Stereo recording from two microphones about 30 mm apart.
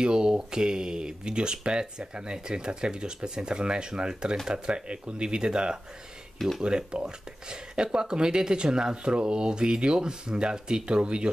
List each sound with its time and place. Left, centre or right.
0.0 s speech: right